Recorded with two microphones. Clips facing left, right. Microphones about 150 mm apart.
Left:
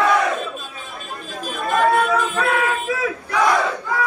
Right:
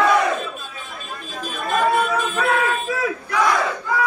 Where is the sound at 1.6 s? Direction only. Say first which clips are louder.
Left 2 dB; centre (ahead or behind).